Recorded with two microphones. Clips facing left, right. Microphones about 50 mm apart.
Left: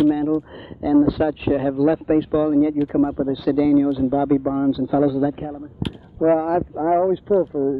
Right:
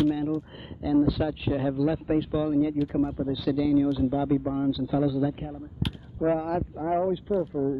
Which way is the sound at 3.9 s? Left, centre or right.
Left.